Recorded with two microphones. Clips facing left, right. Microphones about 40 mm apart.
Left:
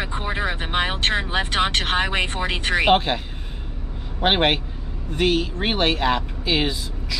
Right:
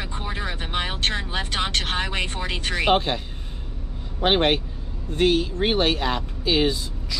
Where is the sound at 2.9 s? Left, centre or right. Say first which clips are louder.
Left 1 dB; left.